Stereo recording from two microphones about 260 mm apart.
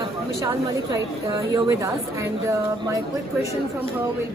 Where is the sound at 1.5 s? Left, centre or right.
Centre.